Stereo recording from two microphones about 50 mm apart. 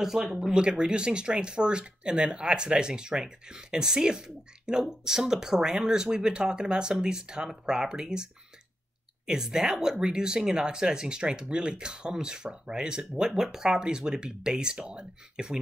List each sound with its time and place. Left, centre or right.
0.0 s speech: centre